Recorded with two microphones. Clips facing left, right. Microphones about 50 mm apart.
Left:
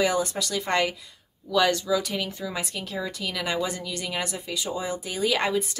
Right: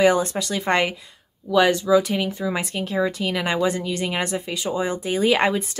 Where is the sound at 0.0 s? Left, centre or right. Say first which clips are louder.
Right 6 dB; right.